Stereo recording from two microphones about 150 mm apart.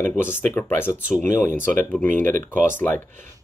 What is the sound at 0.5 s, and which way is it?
Speech, 15° left (ahead or behind).